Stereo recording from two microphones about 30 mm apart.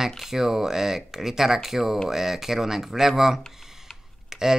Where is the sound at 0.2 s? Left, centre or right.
Centre.